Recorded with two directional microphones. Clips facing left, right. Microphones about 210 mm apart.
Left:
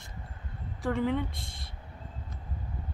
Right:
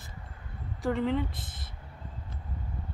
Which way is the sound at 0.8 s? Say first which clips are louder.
Right 1 dB; centre (ahead or behind).